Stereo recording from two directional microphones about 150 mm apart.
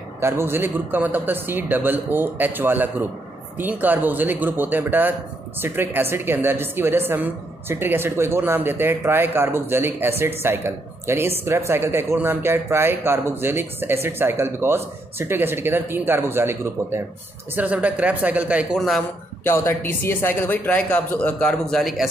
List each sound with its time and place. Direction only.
0.2 s a woman's voice: 15° right (ahead or behind)
18.8 s speech: centre (ahead or behind)
19.4 s a man's voice: 15° left (ahead or behind); by 22.1 s centre (ahead or behind)